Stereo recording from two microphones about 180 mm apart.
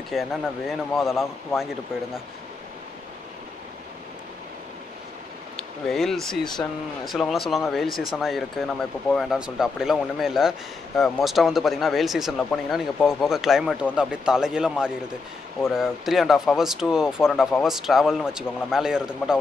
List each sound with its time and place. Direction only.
0.1 s speech: centre (ahead or behind)
5.6 s speech: centre (ahead or behind)
6.4 s speech: 25° left (ahead or behind)
7.1 s speech: centre (ahead or behind)